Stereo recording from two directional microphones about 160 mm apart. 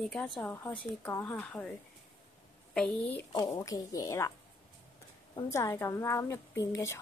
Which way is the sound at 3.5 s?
20° left (ahead or behind).